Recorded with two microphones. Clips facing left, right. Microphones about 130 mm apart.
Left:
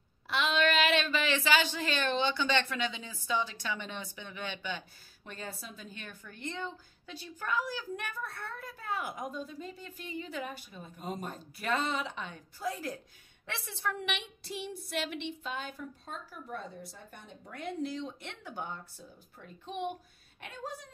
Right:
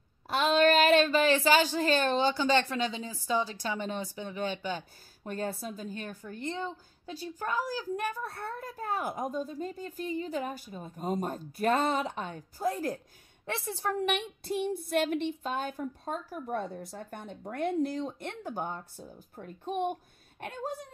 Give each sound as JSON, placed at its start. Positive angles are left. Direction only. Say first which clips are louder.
{"t": 0.3, "sound": "a woman's voice", "louder": "right 5 dB", "side_deg": -40}